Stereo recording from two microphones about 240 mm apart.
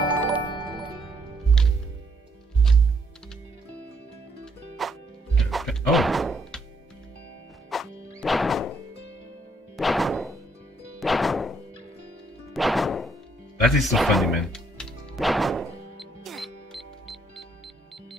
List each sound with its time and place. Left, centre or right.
0.4 s music: centre
1.6 s music: centre
4.7 s music: centre
7.7 s music: centre
9.8 s music: centre
12.5 s music: centre